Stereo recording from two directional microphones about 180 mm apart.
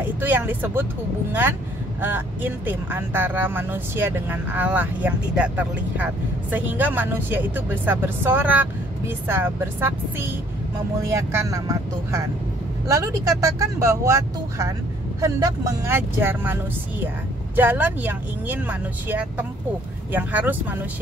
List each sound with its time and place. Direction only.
0.0 s speech: 10° right (ahead or behind)
2.0 s speech: 10° right (ahead or behind)
17.6 s speech: 10° right (ahead or behind)